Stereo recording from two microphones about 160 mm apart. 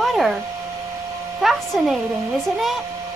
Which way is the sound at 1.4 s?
Centre (ahead or behind).